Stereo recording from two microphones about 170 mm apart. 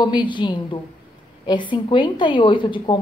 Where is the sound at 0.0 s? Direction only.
25° left (ahead or behind).